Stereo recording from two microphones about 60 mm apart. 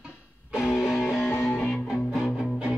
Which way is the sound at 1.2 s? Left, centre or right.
Left.